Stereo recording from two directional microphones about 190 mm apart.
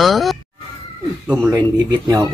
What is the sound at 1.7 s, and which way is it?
Speech, 20° right (ahead or behind).